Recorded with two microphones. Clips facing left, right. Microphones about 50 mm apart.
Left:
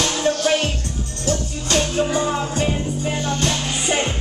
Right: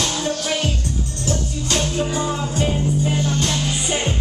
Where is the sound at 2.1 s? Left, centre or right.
Left.